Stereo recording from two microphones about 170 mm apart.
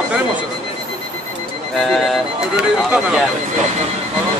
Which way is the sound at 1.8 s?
Centre (ahead or behind).